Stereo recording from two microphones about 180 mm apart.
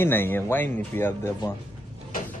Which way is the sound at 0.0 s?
10° left (ahead or behind).